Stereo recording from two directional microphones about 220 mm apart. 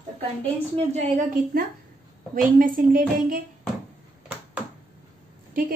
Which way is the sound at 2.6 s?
40° right (ahead or behind).